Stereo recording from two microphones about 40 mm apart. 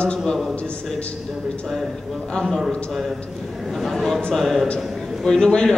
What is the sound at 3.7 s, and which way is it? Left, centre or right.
A man's voice, centre.